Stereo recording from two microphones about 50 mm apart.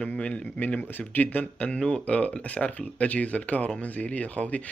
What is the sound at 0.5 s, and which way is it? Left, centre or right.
Speech, left.